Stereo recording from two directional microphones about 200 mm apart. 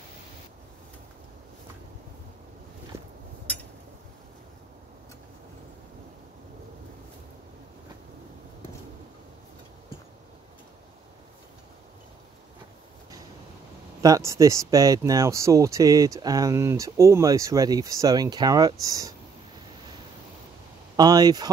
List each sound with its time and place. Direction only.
2.9 s a sound: 15° right (ahead or behind)
14.0 s speech: 15° right (ahead or behind)
20.9 s speech: 20° right (ahead or behind)